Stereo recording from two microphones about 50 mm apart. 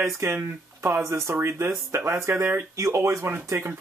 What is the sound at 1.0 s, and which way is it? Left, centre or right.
Speech, right.